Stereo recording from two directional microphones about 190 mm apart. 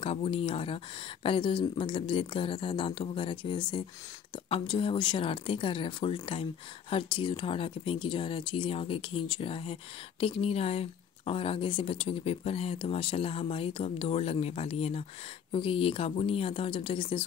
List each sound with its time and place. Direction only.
0.0 s speech: 30° left (ahead or behind)